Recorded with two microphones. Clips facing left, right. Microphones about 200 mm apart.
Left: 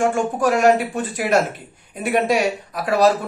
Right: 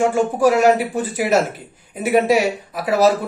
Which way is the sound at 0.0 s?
5° right (ahead or behind).